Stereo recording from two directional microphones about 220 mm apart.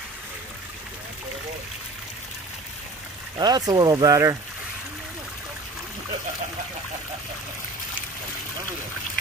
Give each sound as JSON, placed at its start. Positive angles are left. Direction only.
{"t": 3.3, "sound": "speech", "side_deg": -20}